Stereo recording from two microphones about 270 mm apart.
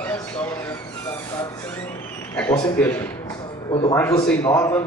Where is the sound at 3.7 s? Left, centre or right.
Centre.